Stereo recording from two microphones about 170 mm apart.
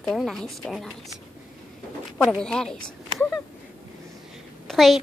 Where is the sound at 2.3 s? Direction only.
5° left (ahead or behind).